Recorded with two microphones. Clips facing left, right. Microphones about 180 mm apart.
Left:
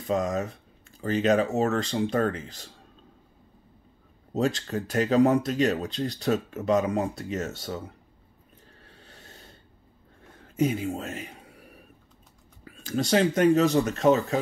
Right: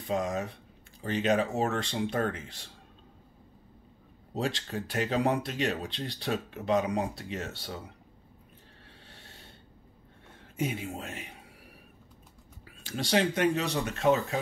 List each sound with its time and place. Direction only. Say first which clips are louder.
0.0 s speech: left 4 dB; 40° left (ahead or behind)
4.3 s speech: left 6 dB; 45° left (ahead or behind)
9.1 s snort: left 4 dB; 40° left (ahead or behind)
10.5 s speech: left 7 dB; 40° left (ahead or behind)
12.8 s speech: left 5 dB; 40° left (ahead or behind)